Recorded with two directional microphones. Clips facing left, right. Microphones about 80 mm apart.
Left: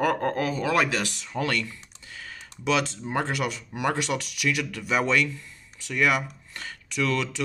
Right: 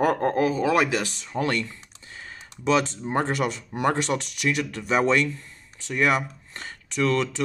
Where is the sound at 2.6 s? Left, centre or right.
Right.